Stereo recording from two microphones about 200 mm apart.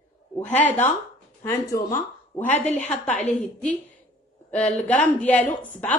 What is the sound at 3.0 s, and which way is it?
Speech, 35° left (ahead or behind).